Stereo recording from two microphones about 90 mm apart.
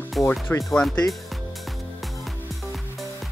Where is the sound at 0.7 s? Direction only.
5° left (ahead or behind).